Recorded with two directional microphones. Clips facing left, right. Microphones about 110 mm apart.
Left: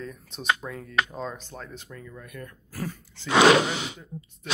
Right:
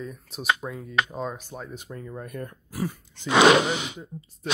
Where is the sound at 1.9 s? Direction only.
35° right (ahead or behind).